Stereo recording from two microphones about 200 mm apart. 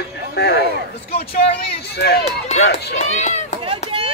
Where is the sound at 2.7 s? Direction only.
55° left (ahead or behind).